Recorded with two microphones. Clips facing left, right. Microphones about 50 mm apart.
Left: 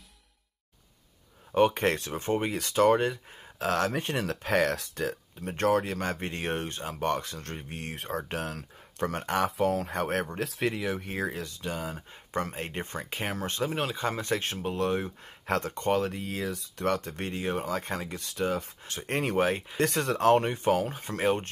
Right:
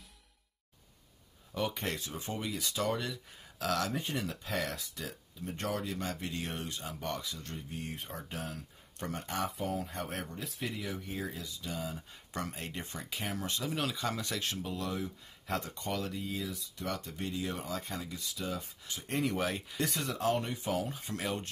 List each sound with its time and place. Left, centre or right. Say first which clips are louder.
1.5 s speech: left 11 dB; left
3.9 s speech: left 6 dB; left
12.4 s speech: left 7 dB; left
16.2 s speech: left 5 dB; left
19.8 s speech: left 8 dB; left